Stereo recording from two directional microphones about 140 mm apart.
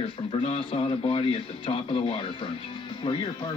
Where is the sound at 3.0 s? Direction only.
45° left (ahead or behind).